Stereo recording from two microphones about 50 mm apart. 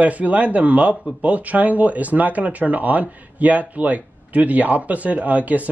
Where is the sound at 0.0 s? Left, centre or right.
Right.